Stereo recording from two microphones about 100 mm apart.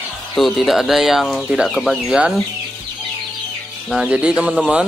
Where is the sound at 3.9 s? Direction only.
10° right (ahead or behind).